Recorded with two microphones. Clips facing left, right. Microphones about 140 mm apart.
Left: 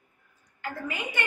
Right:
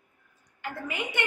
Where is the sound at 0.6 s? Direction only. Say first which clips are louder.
Even; 20° right (ahead or behind).